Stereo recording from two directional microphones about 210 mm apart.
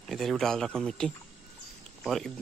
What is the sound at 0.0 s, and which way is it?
Speech, centre (ahead or behind).